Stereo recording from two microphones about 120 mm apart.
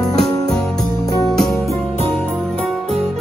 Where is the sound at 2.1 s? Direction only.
10° left (ahead or behind).